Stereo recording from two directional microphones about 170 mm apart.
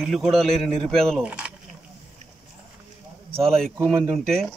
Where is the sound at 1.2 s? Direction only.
10° right (ahead or behind).